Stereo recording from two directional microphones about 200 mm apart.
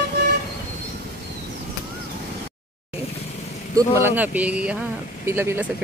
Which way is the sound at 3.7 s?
15° right (ahead or behind).